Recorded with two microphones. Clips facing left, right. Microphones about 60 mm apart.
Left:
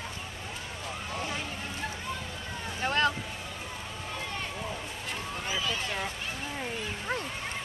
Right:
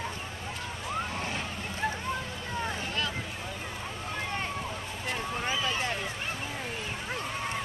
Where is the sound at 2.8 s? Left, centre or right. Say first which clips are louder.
Left 7 dB; left.